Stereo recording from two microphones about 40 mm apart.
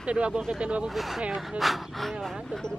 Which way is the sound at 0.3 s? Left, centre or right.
Centre.